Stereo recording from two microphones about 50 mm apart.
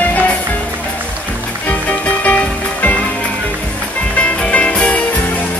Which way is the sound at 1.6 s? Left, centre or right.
Left.